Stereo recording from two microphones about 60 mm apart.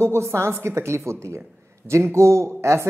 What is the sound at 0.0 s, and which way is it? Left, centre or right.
Speech, right.